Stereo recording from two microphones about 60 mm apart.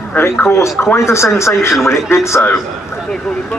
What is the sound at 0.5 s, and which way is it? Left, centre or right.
Speech, left.